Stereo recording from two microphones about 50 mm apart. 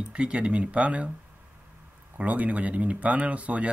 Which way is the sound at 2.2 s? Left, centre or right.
Right.